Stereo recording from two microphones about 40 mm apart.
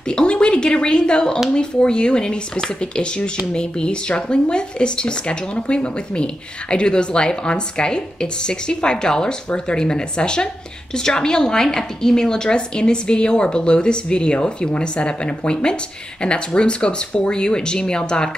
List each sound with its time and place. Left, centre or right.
0.1 s a woman's voice: left